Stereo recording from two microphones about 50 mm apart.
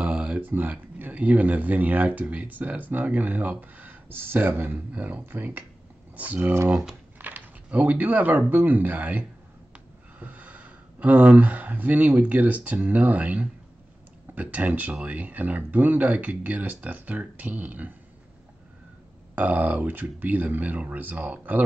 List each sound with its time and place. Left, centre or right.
0.0 s a sound: right
0.5 s speech: right
6.1 s speech: right
19.3 s speech: right